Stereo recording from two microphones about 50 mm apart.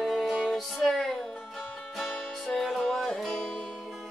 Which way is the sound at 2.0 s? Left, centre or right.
Centre.